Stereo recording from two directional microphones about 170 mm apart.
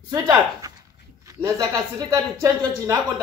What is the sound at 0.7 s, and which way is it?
Dog, 20° right (ahead or behind).